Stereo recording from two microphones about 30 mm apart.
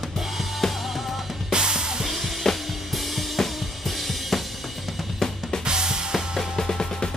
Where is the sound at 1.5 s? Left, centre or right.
Right.